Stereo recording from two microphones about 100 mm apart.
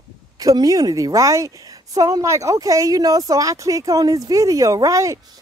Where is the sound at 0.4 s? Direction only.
35° right (ahead or behind).